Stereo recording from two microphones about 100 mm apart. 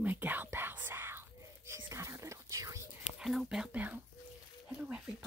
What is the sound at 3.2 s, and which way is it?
Speech, 5° right (ahead or behind).